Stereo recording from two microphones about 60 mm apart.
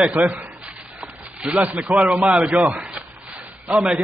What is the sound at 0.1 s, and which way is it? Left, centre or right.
A man's voice, right.